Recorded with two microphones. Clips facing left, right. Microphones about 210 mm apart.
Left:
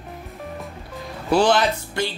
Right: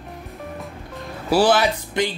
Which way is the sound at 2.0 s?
20° right (ahead or behind).